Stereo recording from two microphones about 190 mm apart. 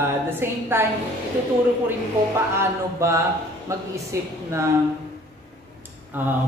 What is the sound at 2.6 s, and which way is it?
Speech, 15° right (ahead or behind).